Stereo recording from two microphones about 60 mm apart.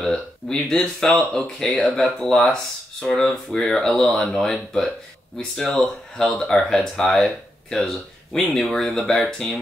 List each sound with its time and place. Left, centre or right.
0.0 s speech: centre